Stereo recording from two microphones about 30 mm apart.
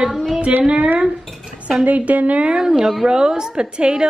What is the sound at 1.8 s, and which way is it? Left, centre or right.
Speech, right.